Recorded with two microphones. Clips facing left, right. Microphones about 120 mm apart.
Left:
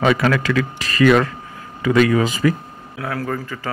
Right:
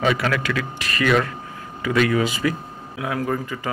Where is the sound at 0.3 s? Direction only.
35° left (ahead or behind).